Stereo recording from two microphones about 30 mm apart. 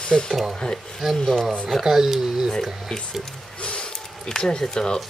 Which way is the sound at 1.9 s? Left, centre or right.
Centre.